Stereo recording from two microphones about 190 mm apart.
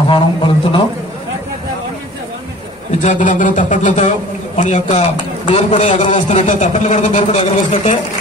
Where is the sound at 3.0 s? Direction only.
45° left (ahead or behind).